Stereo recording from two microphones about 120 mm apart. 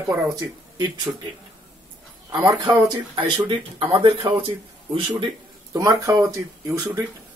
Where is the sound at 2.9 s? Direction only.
45° right (ahead or behind).